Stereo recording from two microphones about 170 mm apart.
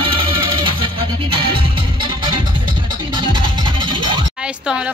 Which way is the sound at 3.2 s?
30° right (ahead or behind).